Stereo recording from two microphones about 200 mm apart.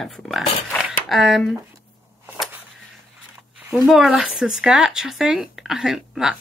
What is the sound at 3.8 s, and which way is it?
Speech, centre (ahead or behind).